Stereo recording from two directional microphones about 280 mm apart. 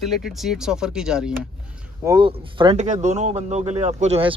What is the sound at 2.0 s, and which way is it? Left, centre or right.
Speech, centre.